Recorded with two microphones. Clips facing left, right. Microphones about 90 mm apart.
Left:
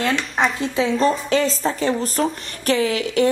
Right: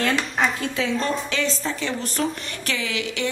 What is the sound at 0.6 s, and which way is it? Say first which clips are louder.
A woman's voice: left 5 dB; 30° left (ahead or behind).